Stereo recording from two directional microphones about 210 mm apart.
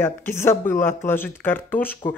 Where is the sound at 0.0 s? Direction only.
10° left (ahead or behind).